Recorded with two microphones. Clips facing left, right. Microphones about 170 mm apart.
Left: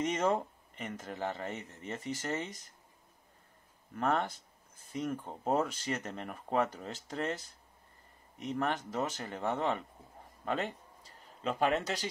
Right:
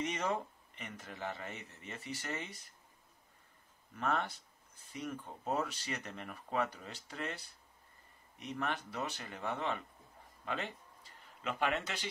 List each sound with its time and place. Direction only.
0.0 s speech: 45° left (ahead or behind)
3.9 s speech: 50° left (ahead or behind)
10.4 s a sound: 40° left (ahead or behind)